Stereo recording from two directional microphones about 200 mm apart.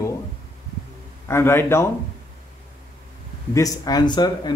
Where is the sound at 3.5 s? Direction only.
20° left (ahead or behind).